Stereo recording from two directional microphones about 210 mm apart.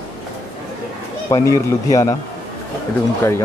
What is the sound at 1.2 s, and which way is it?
Speech, 15° left (ahead or behind).